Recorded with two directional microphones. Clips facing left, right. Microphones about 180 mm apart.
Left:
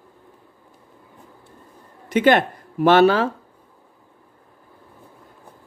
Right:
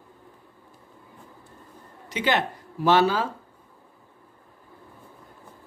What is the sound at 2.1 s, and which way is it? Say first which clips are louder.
Speech: left 9 dB; 50° left (ahead or behind).